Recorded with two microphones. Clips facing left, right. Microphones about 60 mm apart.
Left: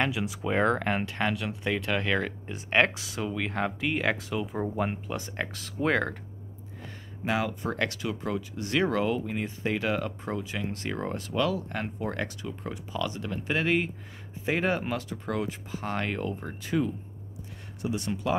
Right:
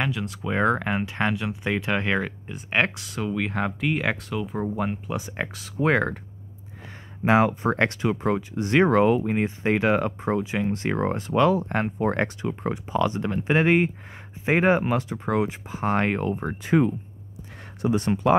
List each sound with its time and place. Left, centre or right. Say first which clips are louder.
0.1 s speech: right 1 dB; centre
1.1 s speech: right 4 dB; centre
2.2 s speech: right 1 dB; centre
7.2 s speech: right 9 dB; right
17.8 s speech: right 8 dB; right